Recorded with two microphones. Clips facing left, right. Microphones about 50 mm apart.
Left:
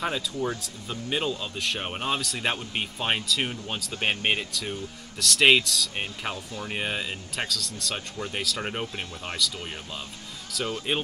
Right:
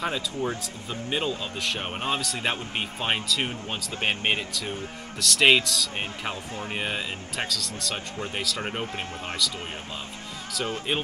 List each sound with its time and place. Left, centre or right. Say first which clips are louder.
0.0 s speech: even; centre
8.8 s speech: right 2 dB; right
10.5 s speech: even; centre